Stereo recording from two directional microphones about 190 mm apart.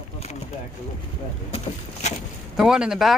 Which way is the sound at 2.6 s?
5° right (ahead or behind).